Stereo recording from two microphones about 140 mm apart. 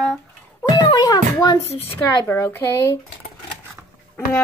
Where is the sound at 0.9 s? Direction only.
30° left (ahead or behind).